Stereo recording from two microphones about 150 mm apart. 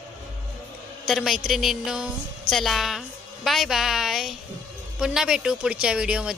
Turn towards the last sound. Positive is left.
turn(degrees=-5)  # may be behind; listen again after turning